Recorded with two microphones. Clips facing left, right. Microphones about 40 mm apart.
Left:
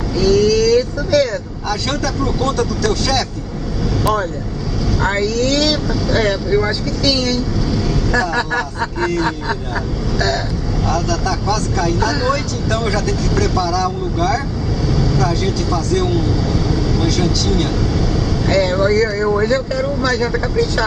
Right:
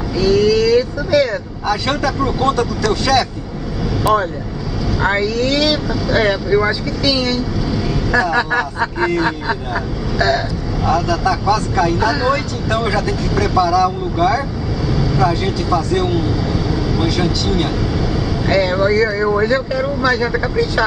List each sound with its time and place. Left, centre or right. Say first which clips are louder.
0.2 s speech: even; centre
10.1 s vehicle: right 3 dB; centre
10.9 s speech: right 4 dB; centre